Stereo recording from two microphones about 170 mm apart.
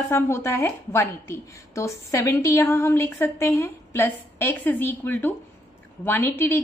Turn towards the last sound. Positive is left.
turn(degrees=10)  # may be behind; listen again after turning